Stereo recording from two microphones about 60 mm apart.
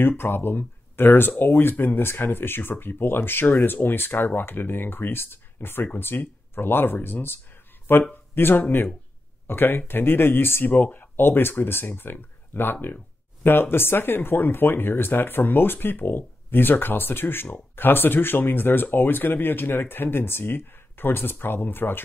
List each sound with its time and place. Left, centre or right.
0.2 s speech: left